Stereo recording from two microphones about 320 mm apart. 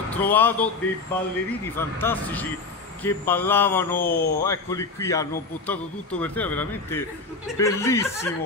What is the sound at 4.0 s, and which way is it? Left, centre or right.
Speech, left.